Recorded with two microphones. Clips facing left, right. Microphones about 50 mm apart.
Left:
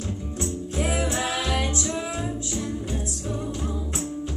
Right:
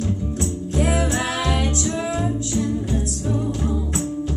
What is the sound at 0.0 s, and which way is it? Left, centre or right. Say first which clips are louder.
Music: right 6 dB; right.